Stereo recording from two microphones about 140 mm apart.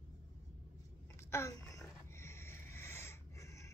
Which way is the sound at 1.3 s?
20° left (ahead or behind).